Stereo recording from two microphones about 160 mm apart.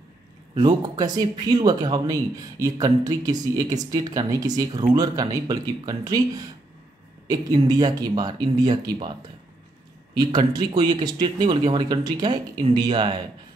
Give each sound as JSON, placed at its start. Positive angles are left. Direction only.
{"t": 0.6, "sound": "speech", "side_deg": -25}
{"t": 10.1, "sound": "speech", "side_deg": -25}